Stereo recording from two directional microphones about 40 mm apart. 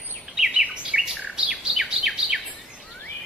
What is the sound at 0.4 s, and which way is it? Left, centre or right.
Bird, centre.